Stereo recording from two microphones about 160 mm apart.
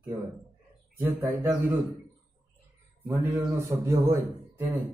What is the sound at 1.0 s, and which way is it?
Speech, 15° right (ahead or behind).